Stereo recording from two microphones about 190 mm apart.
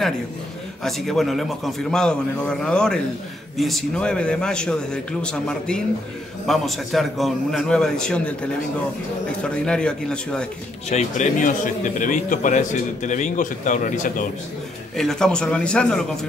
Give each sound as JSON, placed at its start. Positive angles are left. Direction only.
{"t": 0.8, "sound": "a man's voice", "side_deg": 0}
{"t": 9.4, "sound": "a man's voice", "side_deg": 5}
{"t": 10.9, "sound": "a man's voice", "side_deg": 40}
{"t": 15.0, "sound": "a man's voice", "side_deg": 5}